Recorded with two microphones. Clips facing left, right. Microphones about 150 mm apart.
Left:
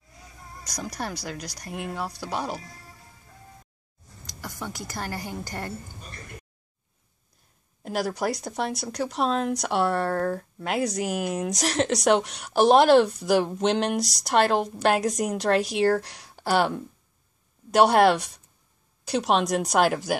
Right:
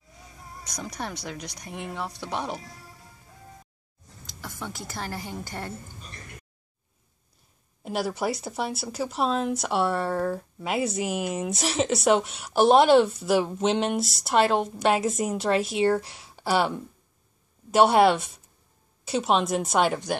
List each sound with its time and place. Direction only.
0.7 s speech: 35° left (ahead or behind)
1.2 s speech: 5° left (ahead or behind)
4.3 s a woman's voice: centre (ahead or behind)
7.8 s speech: 5° right (ahead or behind)